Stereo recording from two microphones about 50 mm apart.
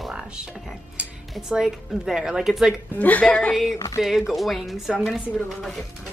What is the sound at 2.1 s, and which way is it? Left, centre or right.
Speech, centre.